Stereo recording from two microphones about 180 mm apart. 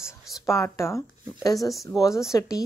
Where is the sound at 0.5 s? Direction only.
15° left (ahead or behind).